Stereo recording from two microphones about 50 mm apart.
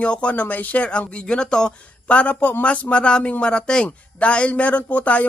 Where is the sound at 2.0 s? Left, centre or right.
Left.